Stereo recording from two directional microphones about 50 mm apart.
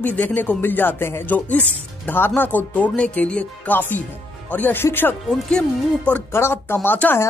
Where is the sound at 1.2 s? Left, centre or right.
Left.